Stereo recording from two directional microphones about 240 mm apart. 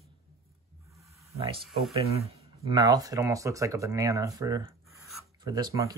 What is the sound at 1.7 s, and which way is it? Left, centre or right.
Speech, centre.